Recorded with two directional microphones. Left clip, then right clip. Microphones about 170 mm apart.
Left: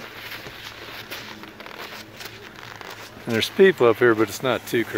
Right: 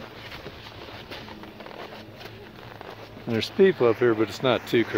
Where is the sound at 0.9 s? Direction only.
35° right (ahead or behind).